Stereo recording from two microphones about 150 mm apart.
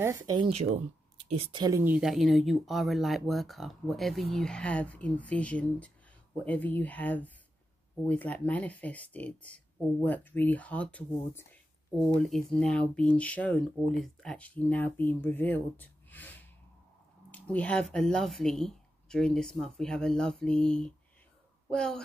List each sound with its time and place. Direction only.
0.0 s speech: 20° right (ahead or behind)
1.3 s speech: 40° right (ahead or behind)
1.6 s speech: 20° right (ahead or behind); by 22.0 s 5° left (ahead or behind)